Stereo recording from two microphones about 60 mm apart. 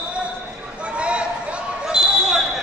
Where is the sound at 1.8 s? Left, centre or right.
Centre.